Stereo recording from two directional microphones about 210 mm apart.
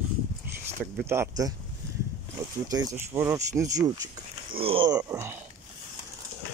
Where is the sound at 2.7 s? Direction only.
15° right (ahead or behind).